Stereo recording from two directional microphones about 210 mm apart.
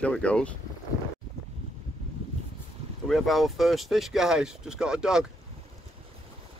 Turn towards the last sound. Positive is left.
turn(degrees=-5)  # may be behind; listen again after turning